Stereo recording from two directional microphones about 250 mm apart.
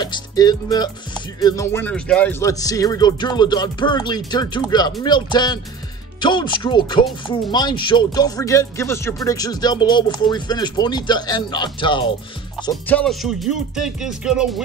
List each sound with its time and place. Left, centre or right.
0.0 s music: centre
1.4 s speech: centre
12.6 s music: centre